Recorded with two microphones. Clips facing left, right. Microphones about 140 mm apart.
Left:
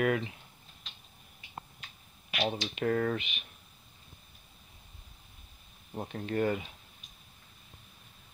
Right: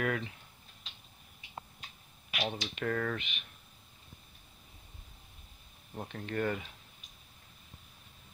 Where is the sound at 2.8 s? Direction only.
25° left (ahead or behind).